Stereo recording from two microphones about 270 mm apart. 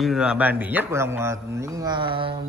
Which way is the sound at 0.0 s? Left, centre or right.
Centre.